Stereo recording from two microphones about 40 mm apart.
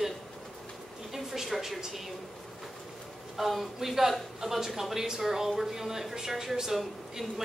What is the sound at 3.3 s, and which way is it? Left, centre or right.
Speech, centre.